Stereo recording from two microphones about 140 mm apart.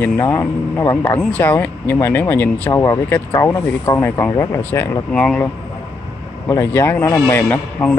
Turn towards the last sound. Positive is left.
turn(degrees=10)  # may be behind; listen again after turning